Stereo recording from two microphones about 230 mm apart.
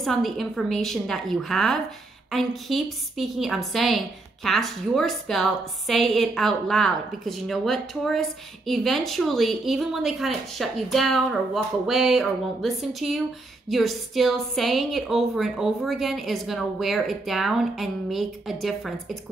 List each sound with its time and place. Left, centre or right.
0.0 s a woman's voice: centre